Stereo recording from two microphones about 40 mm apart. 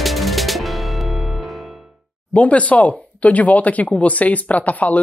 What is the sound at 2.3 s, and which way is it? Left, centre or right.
Speech, left.